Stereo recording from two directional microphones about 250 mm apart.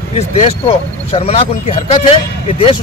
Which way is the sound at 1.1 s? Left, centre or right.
Left.